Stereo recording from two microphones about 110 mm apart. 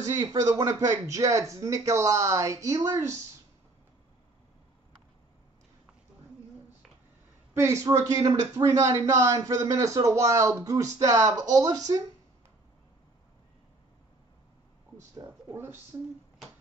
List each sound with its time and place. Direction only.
0.0 s speech: 30° right (ahead or behind)
7.5 s speech: 25° right (ahead or behind)
15.1 s a sound: 20° right (ahead or behind)